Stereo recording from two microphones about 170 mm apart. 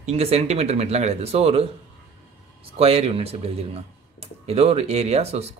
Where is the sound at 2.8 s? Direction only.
35° right (ahead or behind).